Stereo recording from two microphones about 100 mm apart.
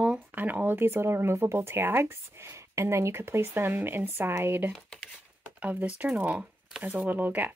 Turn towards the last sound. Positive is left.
turn(degrees=-15)  # may be behind; listen again after turning